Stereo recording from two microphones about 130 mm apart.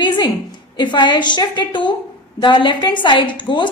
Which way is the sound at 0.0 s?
35° left (ahead or behind).